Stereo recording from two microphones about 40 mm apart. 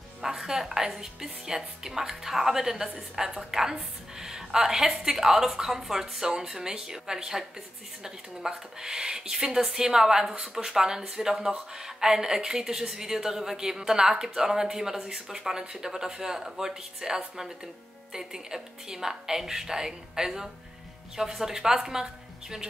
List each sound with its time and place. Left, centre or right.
0.2 s a woman's voice: centre